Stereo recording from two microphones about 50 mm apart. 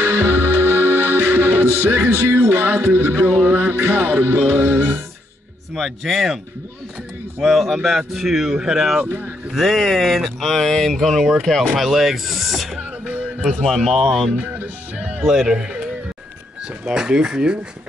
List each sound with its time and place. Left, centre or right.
0.0 s music: right
5.8 s speech: centre
7.4 s speech: centre
9.0 s music: right
9.5 s speech: centre
13.0 s music: right
13.5 s speech: centre
14.3 s music: right
15.1 s speech: centre
16.8 s speech: centre